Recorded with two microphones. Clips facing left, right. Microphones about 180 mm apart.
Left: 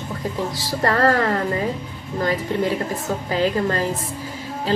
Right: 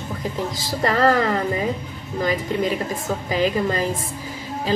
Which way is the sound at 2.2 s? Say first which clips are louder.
Even; 15° right (ahead or behind).